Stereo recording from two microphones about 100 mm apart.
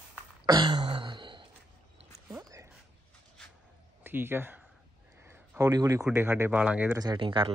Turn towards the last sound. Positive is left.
turn(degrees=-55)  # may be behind; listen again after turning